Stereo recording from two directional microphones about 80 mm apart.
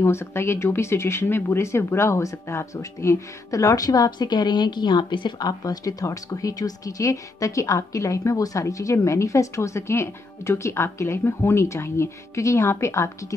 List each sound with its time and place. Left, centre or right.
0.0 s speech: left
5.4 s speech: left